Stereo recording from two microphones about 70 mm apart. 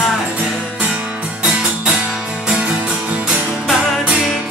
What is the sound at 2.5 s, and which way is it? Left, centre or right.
Music, centre.